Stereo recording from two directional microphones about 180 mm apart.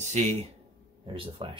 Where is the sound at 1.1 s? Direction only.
30° right (ahead or behind).